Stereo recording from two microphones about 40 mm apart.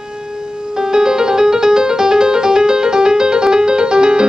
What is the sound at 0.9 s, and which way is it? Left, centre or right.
Music, centre.